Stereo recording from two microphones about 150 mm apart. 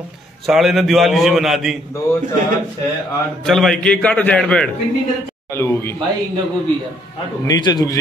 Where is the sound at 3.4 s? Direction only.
Centre (ahead or behind); by 5.9 s 15° left (ahead or behind).